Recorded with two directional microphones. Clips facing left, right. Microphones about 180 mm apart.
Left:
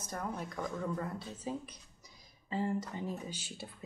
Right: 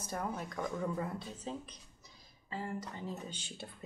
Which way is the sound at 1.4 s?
10° left (ahead or behind).